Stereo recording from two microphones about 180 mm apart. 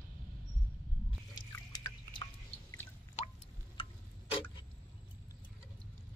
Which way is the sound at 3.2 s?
35° left (ahead or behind).